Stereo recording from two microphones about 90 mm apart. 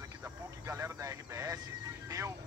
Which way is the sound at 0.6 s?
35° right (ahead or behind).